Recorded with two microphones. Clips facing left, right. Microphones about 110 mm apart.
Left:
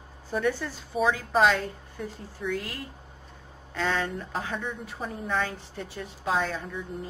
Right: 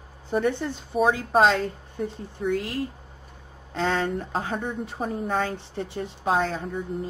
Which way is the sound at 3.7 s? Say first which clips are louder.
Right 3 dB; 30° right (ahead or behind).